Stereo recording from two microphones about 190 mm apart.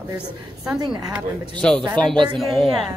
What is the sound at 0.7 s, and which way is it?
Speech, 20° right (ahead or behind).